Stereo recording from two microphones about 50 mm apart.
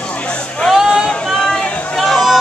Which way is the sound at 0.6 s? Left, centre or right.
Centre.